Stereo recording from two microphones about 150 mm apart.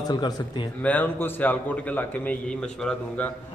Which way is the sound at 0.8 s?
10° left (ahead or behind).